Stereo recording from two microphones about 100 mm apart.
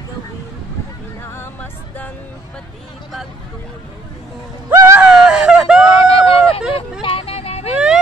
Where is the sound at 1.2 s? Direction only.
20° left (ahead or behind).